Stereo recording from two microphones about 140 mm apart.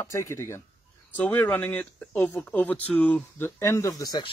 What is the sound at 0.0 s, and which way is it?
Speech, 20° left (ahead or behind).